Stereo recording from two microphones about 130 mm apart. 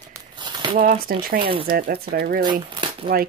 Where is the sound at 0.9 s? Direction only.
45° right (ahead or behind).